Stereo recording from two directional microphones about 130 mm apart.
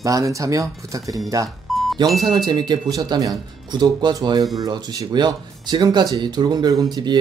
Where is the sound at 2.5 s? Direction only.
35° right (ahead or behind).